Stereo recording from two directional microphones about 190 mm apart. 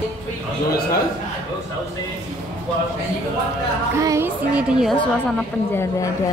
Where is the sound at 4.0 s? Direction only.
15° right (ahead or behind).